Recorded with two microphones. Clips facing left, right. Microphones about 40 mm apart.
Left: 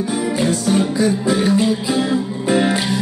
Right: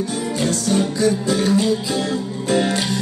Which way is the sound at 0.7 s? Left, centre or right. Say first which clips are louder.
Even; centre.